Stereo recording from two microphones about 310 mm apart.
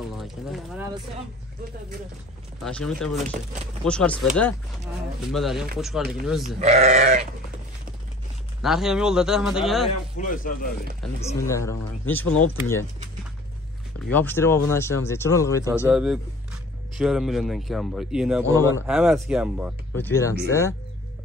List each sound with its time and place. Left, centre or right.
0.1 s speech: centre
2.6 s a man's voice: centre
6.6 s speech: right
8.6 s a man's voice: centre
9.8 s speech: left
11.3 s speech: centre
14.1 s speech: centre
15.9 s a man's voice: centre